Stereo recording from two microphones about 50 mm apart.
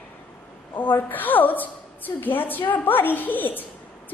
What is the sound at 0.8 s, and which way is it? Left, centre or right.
A woman's voice, left.